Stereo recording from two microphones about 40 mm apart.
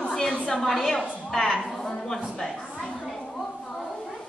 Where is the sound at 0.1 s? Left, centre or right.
Centre.